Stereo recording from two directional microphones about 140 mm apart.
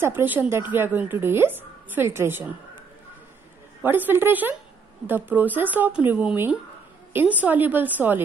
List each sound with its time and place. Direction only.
0.0 s speech: 15° right (ahead or behind)
3.8 s speech: 15° right (ahead or behind)